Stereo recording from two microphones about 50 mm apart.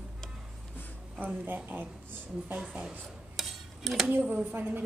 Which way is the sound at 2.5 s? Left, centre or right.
Right.